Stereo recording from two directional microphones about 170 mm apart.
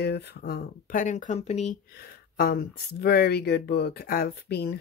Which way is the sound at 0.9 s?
50° left (ahead or behind).